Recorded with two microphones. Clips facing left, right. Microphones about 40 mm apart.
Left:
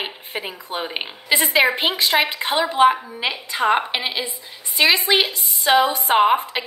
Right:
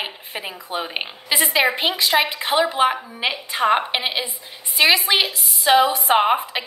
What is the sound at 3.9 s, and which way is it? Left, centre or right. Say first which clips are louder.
Speech: right 1 dB; centre.